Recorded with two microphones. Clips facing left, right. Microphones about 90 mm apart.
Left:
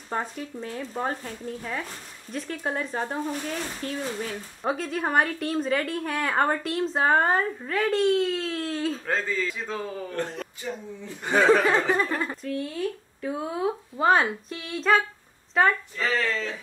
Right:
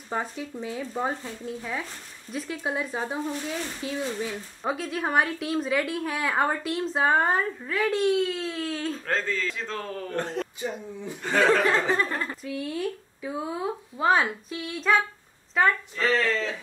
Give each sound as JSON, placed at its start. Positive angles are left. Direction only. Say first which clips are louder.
{"t": 0.1, "sound": "a woman's voice", "louder": "even", "side_deg": -5}
{"t": 11.2, "sound": "speech", "louder": "left 2 dB", "side_deg": 15}
{"t": 12.4, "sound": "speech", "louder": "left 1 dB", "side_deg": -10}
{"t": 13.2, "sound": "a woman's voice", "louder": "left 3 dB", "side_deg": 0}